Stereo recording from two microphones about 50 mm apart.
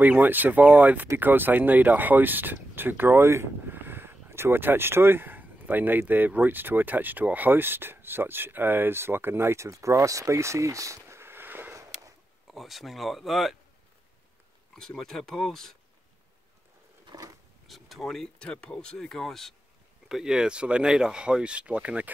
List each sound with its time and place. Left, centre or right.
0.0 s speech: right
3.6 s speech: right
11.1 s a sound: right
12.5 s speech: centre
14.8 s speech: centre
17.6 s speech: centre
18.4 s speech: centre
20.1 s speech: centre